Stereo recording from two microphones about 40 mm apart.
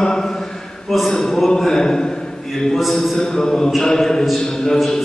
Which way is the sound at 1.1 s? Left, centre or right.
Centre.